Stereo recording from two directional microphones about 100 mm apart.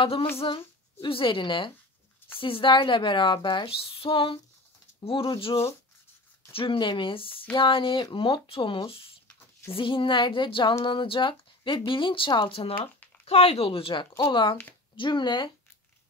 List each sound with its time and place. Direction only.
0.0 s a woman's voice: 65° left (ahead or behind)
13.2 s speech: 90° left; by 15.5 s 50° left (ahead or behind)